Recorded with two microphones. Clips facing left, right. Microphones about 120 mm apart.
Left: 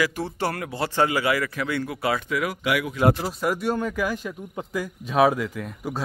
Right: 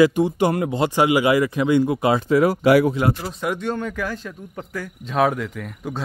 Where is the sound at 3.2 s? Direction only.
5° left (ahead or behind).